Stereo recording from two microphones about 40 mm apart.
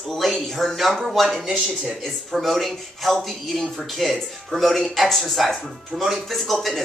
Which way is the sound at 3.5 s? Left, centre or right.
Centre.